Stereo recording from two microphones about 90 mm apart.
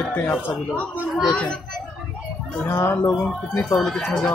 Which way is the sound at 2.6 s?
25° left (ahead or behind).